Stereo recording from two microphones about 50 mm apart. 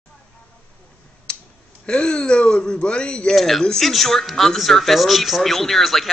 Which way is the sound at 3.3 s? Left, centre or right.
Centre.